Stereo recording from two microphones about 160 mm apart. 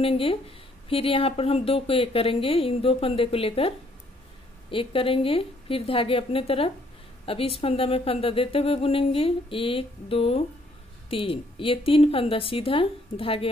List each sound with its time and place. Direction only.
0.0 s speech: 35° left (ahead or behind)